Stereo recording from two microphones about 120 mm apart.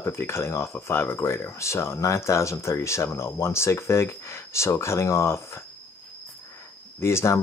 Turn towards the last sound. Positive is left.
turn(degrees=20)  # may be behind; listen again after turning